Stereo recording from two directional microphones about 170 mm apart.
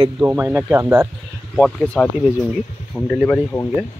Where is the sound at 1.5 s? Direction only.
5° left (ahead or behind).